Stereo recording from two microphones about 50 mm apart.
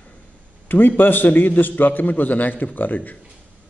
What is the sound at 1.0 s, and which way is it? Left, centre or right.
A man's voice, left.